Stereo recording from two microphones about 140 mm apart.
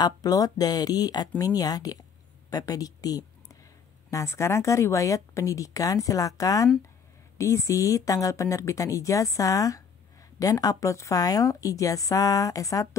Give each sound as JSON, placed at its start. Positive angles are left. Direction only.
{"t": 0.0, "sound": "speech", "side_deg": 25}